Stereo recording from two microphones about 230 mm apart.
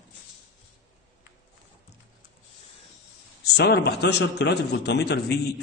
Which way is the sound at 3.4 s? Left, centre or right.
Left.